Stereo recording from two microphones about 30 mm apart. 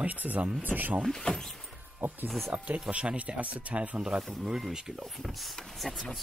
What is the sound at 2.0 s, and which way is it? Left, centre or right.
Speech, right.